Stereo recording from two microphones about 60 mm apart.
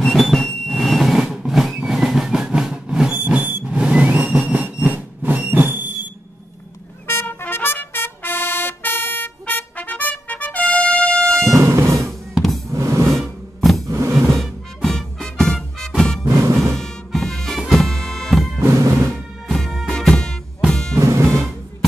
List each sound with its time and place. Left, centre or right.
0.0 s vehicle: centre
1.9 s a sound: centre
3.1 s vehicle: right
3.7 s train: centre; by 5.9 s right
7.1 s trumpet: left; by 11.5 s centre
11.5 s drum: right
12.4 s music: centre
12.6 s music: right
13.1 s music: centre
13.8 s music: right
14.3 s music: centre
16.3 s music: right
16.7 s music: centre